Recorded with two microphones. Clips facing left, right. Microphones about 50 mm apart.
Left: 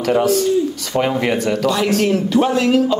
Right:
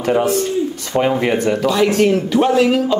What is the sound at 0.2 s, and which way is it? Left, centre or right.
Speech, right.